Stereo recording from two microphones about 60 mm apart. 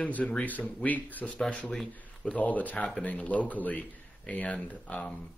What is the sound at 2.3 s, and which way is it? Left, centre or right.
A man's voice, left.